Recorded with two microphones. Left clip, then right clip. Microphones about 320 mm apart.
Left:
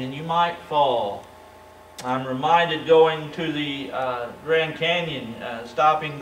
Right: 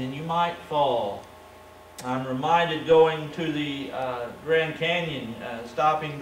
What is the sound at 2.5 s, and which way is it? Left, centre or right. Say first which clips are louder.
A man's voice: left 3 dB; centre.